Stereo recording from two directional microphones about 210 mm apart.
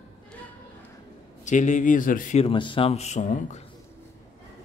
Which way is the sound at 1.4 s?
35° left (ahead or behind).